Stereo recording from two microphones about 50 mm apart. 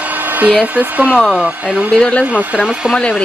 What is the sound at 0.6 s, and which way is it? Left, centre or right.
Speech, right.